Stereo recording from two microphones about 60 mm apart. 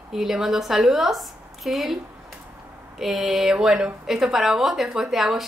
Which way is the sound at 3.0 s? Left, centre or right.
Centre.